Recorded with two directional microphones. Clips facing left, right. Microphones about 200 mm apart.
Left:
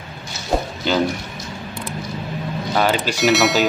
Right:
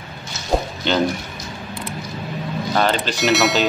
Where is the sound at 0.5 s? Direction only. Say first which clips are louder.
Right 1 dB; centre (ahead or behind).